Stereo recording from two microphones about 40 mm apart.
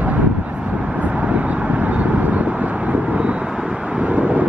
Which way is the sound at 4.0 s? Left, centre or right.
Right.